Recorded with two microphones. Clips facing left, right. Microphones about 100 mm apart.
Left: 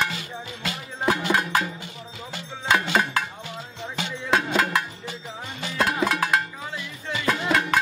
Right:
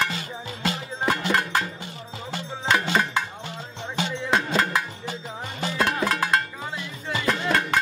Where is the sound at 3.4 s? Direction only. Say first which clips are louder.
Even; 30° right (ahead or behind).